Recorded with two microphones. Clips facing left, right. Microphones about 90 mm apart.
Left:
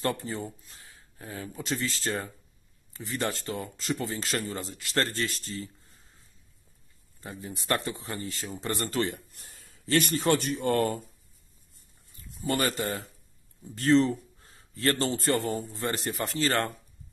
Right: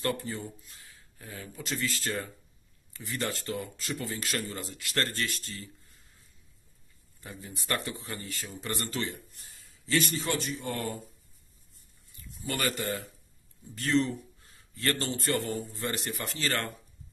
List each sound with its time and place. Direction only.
0.0 s speech: 30° left (ahead or behind)
7.4 s speech: 30° left (ahead or behind)
9.3 s speech: 55° left (ahead or behind)
12.1 s speech: 35° left (ahead or behind)